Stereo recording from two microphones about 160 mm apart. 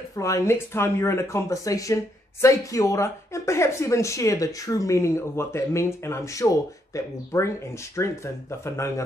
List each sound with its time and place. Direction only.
0.1 s speech: 20° left (ahead or behind)